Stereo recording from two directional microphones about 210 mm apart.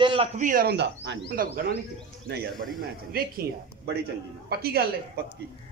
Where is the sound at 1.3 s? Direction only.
40° right (ahead or behind).